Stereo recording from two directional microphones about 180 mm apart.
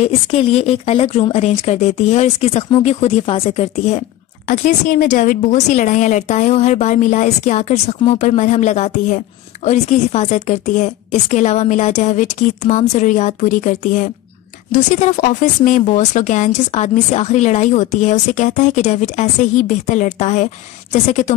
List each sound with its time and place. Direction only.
0.0 s speech: 35° left (ahead or behind)
4.5 s speech: 45° left (ahead or behind)